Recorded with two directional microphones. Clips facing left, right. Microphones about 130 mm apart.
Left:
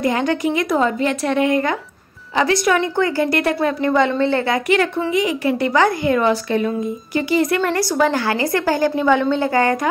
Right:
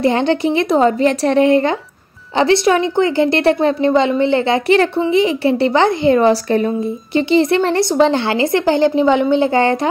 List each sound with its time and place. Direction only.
0.0 s a woman's voice: 30° right (ahead or behind)
4.6 s a woman's voice: 30° right (ahead or behind)